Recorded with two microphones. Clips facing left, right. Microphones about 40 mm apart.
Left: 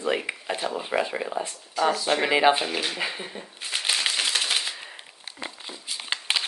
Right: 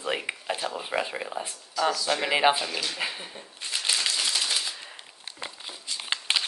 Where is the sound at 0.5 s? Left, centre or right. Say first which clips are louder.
Left 2 dB; centre.